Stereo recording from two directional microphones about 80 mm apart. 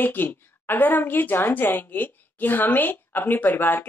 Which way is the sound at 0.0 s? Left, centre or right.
Left.